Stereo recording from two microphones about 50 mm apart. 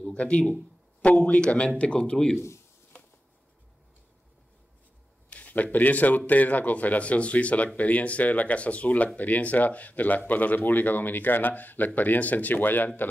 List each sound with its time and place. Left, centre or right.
0.0 s speech: left
5.3 s a man's voice: left